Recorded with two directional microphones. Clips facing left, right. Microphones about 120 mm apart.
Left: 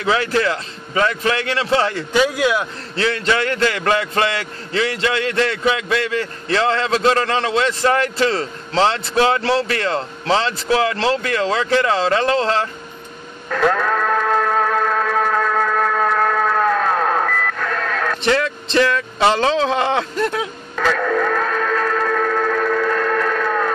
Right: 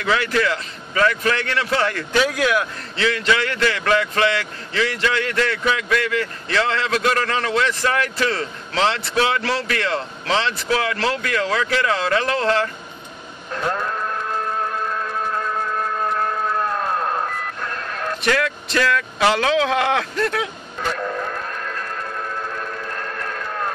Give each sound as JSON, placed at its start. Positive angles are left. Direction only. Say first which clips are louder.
{"t": 0.0, "sound": "a man's voice", "louder": "left 2 dB", "side_deg": 30}
{"t": 3.0, "sound": "a man's voice", "louder": "left 1 dB", "side_deg": 35}
{"t": 13.5, "sound": "music", "louder": "left 7 dB", "side_deg": 90}
{"t": 18.2, "sound": "a man's voice", "louder": "left 1 dB", "side_deg": 25}
{"t": 20.7, "sound": "music", "louder": "left 8 dB", "side_deg": 90}